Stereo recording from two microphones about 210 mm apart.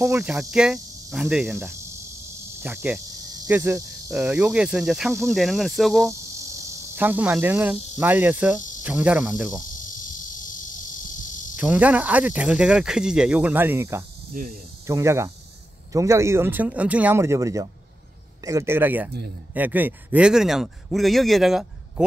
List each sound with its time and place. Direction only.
0.0 s cricket: 10° right (ahead or behind)
2.6 s speech: 10° right (ahead or behind)
3.4 s cricket: 10° right (ahead or behind)
7.0 s speech: 10° right (ahead or behind)
8.8 s cricket: 5° right (ahead or behind)
9.8 s cricket: 40° left (ahead or behind)
11.5 s speech: 5° right (ahead or behind)
14.3 s speech: 40° right (ahead or behind)
14.9 s speech: 15° right (ahead or behind)
19.5 s cricket: 10° right (ahead or behind)